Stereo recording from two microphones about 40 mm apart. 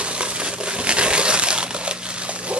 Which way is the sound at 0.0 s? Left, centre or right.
Right.